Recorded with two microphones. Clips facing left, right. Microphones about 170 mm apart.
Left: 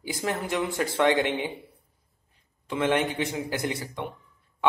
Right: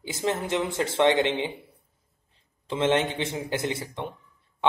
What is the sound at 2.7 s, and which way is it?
Speech, 25° right (ahead or behind).